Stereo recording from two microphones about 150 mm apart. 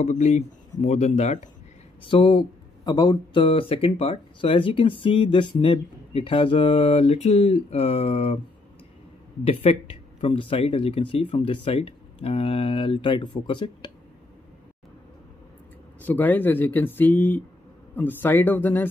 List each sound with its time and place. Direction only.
0.0 s speech: 50° left (ahead or behind)
2.0 s speech: 35° left (ahead or behind)
9.4 s speech: 40° left (ahead or behind)
16.0 s speech: 10° left (ahead or behind)